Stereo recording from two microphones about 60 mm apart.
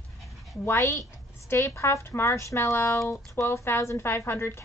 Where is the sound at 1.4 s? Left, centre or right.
Left.